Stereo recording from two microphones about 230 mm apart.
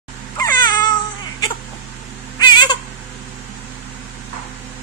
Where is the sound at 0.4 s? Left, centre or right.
Centre.